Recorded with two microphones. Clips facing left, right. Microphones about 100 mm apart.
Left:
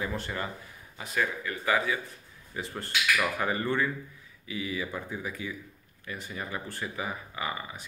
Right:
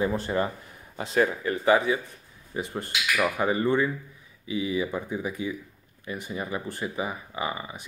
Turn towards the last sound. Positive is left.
turn(degrees=-20)  # may be behind; listen again after turning